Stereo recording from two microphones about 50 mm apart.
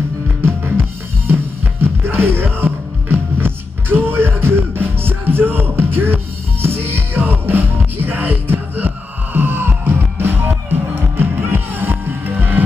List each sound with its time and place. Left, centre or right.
0.7 s music: right